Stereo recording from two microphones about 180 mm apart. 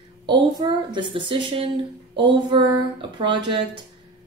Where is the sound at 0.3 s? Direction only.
25° right (ahead or behind).